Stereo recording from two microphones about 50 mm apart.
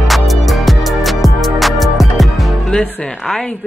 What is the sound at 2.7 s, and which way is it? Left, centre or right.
Music, centre.